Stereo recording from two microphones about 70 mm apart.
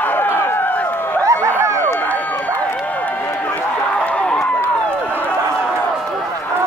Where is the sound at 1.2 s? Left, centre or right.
Right.